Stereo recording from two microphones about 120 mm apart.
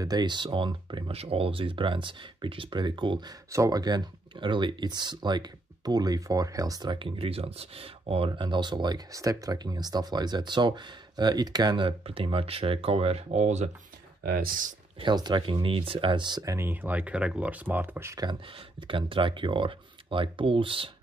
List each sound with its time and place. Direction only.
0.0 s speech: 35° right (ahead or behind)
1.1 s speech: 55° right (ahead or behind)
8.3 s speech: 40° right (ahead or behind); by 13.7 s 70° right (ahead or behind)
15.0 s speech: 40° right (ahead or behind)
16.5 s speech: 15° right (ahead or behind)
18.8 s speech: 45° right (ahead or behind)